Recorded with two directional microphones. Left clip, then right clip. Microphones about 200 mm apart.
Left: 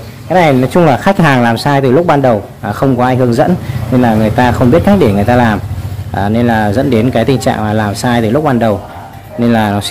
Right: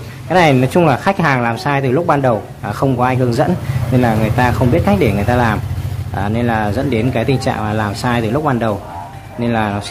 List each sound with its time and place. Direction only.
0.3 s speech: 10° left (ahead or behind)
0.8 s speech: 25° left (ahead or behind)
4.4 s speech: 25° left (ahead or behind)